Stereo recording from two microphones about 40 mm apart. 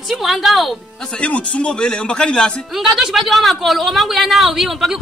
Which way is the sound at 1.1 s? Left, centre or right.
Left.